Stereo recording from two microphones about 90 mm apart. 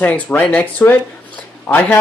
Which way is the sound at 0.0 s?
15° left (ahead or behind).